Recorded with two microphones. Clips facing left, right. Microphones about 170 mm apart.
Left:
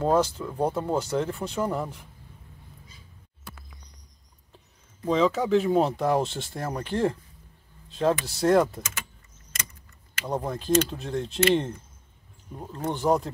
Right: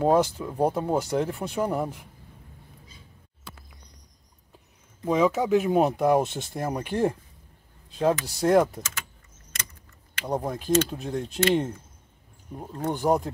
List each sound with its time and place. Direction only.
0.0 s speech: 15° right (ahead or behind)
5.0 s speech: 15° right (ahead or behind)
10.2 s speech: 10° right (ahead or behind)
12.5 s speech: 10° right (ahead or behind)